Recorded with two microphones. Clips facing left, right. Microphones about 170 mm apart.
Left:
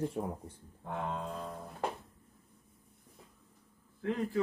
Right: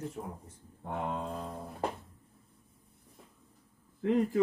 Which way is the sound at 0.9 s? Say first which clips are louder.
Right 2 dB; 20° right (ahead or behind).